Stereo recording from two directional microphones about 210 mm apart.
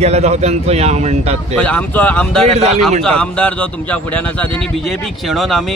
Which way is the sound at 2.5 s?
30° right (ahead or behind).